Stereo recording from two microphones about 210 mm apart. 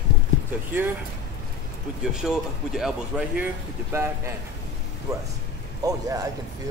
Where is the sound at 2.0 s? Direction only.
5° right (ahead or behind).